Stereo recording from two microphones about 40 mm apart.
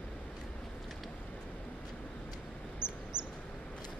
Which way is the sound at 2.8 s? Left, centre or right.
Left.